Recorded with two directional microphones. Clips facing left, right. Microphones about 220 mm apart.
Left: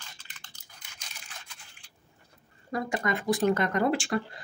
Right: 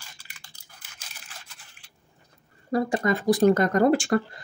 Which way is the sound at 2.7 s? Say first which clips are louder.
Right 6 dB; 35° right (ahead or behind).